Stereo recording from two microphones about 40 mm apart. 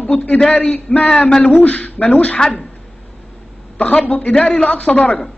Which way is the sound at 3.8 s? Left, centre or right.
Left.